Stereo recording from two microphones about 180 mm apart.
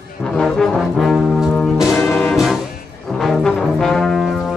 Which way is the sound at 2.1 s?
10° left (ahead or behind).